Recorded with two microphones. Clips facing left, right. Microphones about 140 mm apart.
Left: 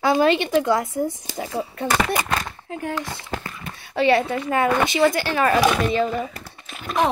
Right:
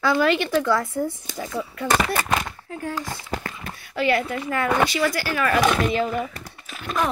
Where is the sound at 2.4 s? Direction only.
20° left (ahead or behind).